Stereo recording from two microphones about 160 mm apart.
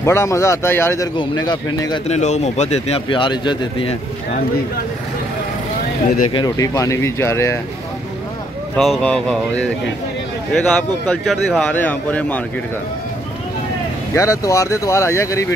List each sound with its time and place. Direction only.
0.0 s speech: 15° left (ahead or behind)
2.0 s speech: 45° left (ahead or behind)
6.3 s speech: 25° left (ahead or behind)
8.7 s a sound: centre (ahead or behind)
10.5 s speech: 10° left (ahead or behind)
14.1 s speech: 20° left (ahead or behind)